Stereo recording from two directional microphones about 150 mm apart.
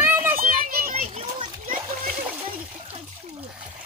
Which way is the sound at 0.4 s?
70° right (ahead or behind).